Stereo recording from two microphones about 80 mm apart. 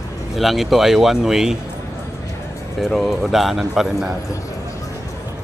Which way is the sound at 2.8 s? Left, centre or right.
Centre.